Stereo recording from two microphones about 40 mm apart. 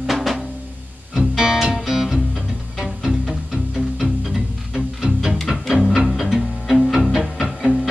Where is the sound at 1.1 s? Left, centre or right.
Centre.